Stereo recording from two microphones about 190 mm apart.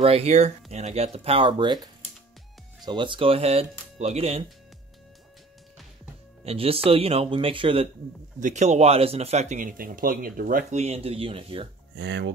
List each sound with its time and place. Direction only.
0.0 s speech: 35° right (ahead or behind)
6.4 s speech: 30° right (ahead or behind)
8.4 s speech: 40° right (ahead or behind)
11.9 s speech: 65° right (ahead or behind)